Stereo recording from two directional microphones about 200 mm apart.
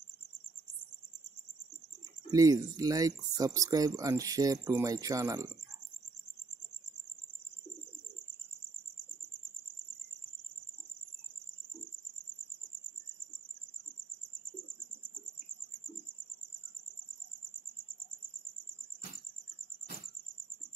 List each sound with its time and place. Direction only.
2.3 s speech: 20° right (ahead or behind)